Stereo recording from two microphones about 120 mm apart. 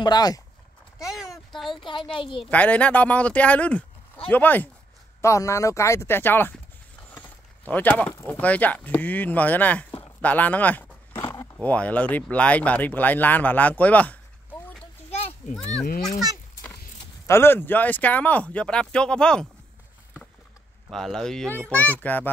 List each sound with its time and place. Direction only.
0.0 s speech: 35° left (ahead or behind)
0.9 s a sound: 5° right (ahead or behind)
1.8 s speech: 45° left (ahead or behind)
2.5 s speech: 10° left (ahead or behind)
5.2 s speech: 25° left (ahead or behind)
7.2 s a sound: 15° left (ahead or behind)
8.1 s speech: 25° left (ahead or behind)
8.4 s speech: 15° left (ahead or behind)
11.1 s a sound: 30° left (ahead or behind)
11.6 s speech: 10° left (ahead or behind)
15.4 s speech: 75° left (ahead or behind)
17.3 s speech: 20° left (ahead or behind)
20.9 s speech: centre (ahead or behind)
22.0 s speech: 15° left (ahead or behind)